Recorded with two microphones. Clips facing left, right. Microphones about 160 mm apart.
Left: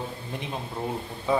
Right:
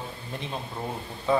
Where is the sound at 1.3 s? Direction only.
15° left (ahead or behind).